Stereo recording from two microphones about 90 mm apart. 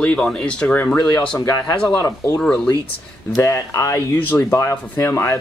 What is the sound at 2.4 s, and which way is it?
Speech, 10° left (ahead or behind).